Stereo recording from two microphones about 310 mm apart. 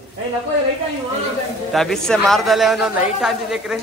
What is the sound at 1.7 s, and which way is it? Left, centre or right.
A man's voice, centre.